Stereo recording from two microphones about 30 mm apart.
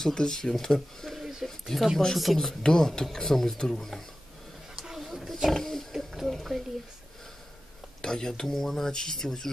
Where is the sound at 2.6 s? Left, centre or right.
Centre.